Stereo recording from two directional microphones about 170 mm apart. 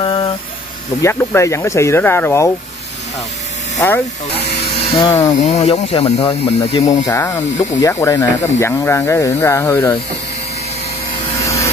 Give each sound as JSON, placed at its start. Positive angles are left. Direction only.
{"t": 0.0, "sound": "a sound", "side_deg": 30}
{"t": 1.0, "sound": "speech", "side_deg": 15}
{"t": 4.6, "sound": "electric shaver", "side_deg": 30}
{"t": 5.2, "sound": "speech", "side_deg": 40}
{"t": 6.9, "sound": "speech", "side_deg": 15}